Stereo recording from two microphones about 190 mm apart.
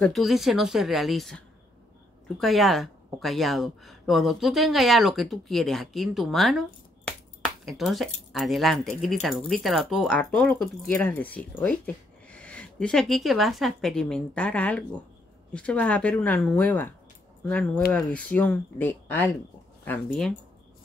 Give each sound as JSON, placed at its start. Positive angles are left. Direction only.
{"t": 0.0, "sound": "speech", "side_deg": 0}
{"t": 7.1, "sound": "finger snapping", "side_deg": 0}
{"t": 8.3, "sound": "speech", "side_deg": 0}